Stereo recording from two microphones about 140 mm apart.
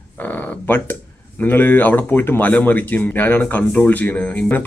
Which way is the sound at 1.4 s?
15° left (ahead or behind).